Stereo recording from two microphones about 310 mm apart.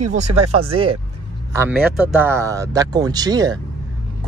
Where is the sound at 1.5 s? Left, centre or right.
Centre.